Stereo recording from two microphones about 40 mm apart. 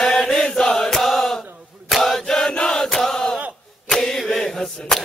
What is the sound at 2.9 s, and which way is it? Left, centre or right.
Battle cry, centre.